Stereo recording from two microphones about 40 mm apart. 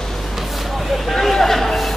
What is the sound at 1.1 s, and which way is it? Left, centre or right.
Chatter, centre.